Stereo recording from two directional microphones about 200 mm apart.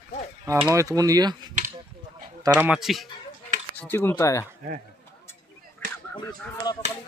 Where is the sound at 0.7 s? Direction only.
15° right (ahead or behind).